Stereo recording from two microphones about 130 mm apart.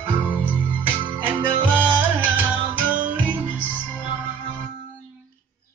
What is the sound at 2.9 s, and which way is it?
Music, 10° right (ahead or behind).